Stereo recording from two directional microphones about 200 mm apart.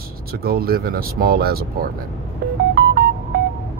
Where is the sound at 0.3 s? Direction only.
50° right (ahead or behind).